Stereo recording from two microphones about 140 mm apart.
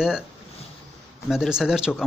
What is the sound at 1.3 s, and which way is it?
Speech, 5° right (ahead or behind).